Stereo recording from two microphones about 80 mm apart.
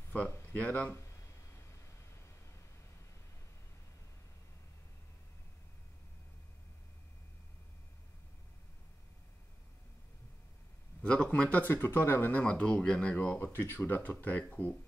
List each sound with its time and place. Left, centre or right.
0.6 s speech: centre
11.0 s speech: centre
13.3 s speech: left